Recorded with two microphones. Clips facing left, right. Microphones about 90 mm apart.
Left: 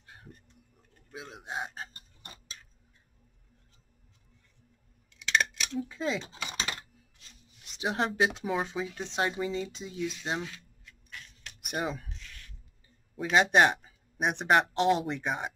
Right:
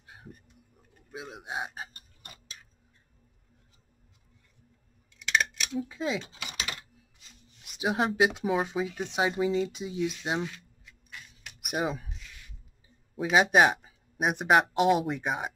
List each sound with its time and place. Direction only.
0.0 s a sound: 10° right (ahead or behind)
5.2 s a sound: centre (ahead or behind)
6.2 s typing: 35° left (ahead or behind)
7.2 s speech: 5° right (ahead or behind)
9.8 s scissors: 10° right (ahead or behind)
13.1 s speech: 5° right (ahead or behind)